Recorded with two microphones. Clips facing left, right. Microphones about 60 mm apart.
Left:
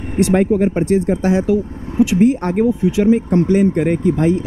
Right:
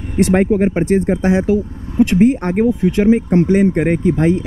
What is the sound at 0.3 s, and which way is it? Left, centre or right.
Speech, right.